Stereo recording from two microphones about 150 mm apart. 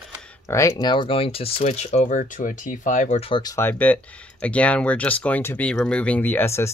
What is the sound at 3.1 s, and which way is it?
Speech, 40° left (ahead or behind).